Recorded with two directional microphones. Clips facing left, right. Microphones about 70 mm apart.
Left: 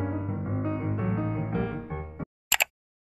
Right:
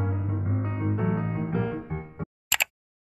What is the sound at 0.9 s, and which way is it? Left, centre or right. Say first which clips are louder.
Music: right 2 dB; right.